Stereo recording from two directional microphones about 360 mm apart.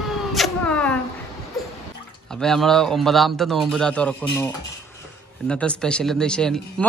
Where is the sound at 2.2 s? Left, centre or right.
Centre.